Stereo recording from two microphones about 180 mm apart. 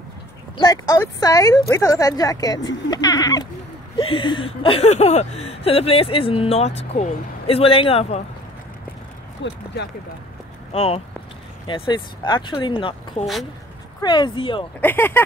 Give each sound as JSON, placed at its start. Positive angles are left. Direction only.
{"t": 0.6, "sound": "speech", "side_deg": 20}
{"t": 9.4, "sound": "speech", "side_deg": 80}
{"t": 10.7, "sound": "speech", "side_deg": 35}
{"t": 13.2, "sound": "speech", "side_deg": 0}
{"t": 14.0, "sound": "speech", "side_deg": 25}
{"t": 14.8, "sound": "speech", "side_deg": 10}